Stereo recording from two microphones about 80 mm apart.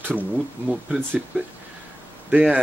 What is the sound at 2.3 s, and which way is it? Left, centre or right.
Speech, centre.